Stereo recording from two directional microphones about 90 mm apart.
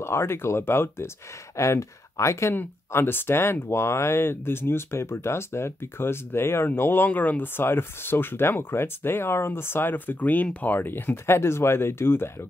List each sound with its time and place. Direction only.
0.0 s speech: 30° left (ahead or behind)